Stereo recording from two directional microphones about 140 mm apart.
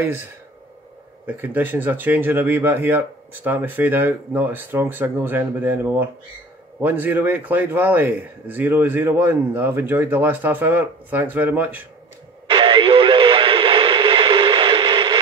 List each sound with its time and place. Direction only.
1.2 s speech: 15° right (ahead or behind)
12.4 s radio: 35° right (ahead or behind)